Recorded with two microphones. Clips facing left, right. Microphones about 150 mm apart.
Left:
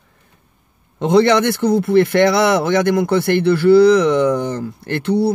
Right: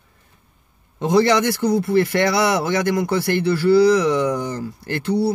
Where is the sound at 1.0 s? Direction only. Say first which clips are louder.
Left 3 dB; 60° left (ahead or behind).